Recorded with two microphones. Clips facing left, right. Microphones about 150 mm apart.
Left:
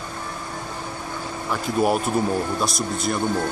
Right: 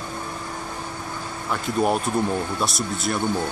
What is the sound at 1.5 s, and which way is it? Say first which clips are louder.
Speech: left 1 dB; 5° left (ahead or behind).